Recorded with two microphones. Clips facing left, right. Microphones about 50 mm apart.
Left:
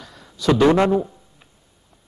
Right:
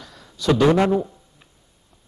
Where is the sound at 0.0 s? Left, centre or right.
Centre.